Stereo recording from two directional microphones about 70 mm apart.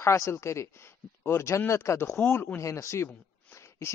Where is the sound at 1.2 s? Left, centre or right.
Left.